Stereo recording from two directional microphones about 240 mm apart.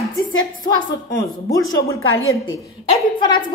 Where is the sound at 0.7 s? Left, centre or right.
Centre.